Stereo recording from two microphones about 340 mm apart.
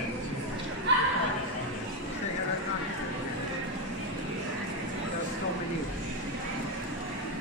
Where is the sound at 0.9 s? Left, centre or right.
Right.